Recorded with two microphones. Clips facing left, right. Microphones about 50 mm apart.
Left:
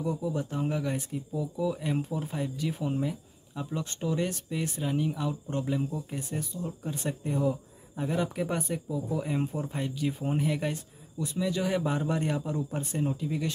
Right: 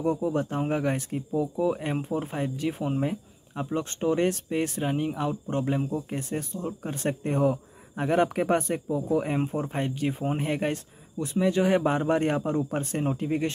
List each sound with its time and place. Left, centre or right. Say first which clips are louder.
0.0 s speech: right 5 dB; right